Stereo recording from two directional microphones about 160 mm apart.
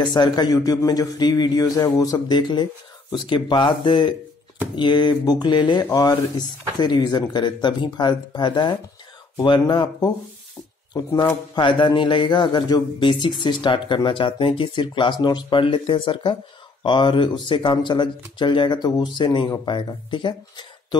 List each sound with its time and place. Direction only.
0.0 s speech: 25° left (ahead or behind)